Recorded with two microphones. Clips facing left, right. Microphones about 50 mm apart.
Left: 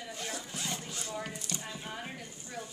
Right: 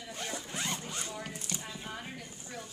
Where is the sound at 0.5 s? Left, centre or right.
Right.